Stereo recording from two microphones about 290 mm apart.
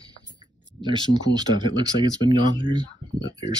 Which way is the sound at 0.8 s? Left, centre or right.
Centre.